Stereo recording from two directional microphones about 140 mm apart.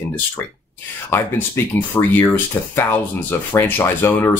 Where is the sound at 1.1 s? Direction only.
15° left (ahead or behind).